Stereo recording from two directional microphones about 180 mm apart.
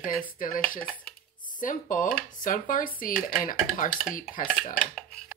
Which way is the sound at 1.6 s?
45° left (ahead or behind).